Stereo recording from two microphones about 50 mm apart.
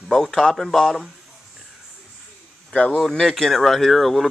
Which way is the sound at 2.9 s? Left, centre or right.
Centre.